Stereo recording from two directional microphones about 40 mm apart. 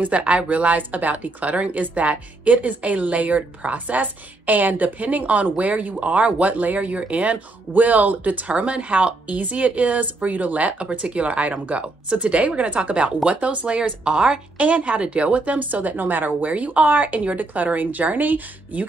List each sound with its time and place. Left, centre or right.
0.0 s a woman's voice: right
14.6 s a woman's voice: right